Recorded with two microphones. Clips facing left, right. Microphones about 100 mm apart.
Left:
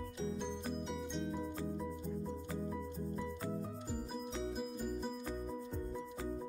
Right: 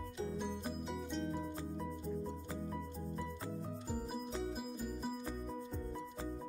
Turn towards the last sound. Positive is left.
turn(degrees=0)  # may be behind; listen again after turning